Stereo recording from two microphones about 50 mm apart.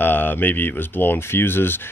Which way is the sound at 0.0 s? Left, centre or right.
Left.